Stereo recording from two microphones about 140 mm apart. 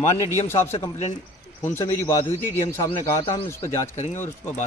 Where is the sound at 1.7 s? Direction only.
20° left (ahead or behind).